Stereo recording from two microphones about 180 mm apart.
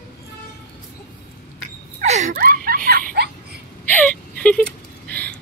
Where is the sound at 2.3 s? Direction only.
55° right (ahead or behind).